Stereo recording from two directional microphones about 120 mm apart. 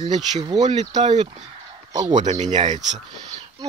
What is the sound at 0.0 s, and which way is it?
Speech, 40° right (ahead or behind).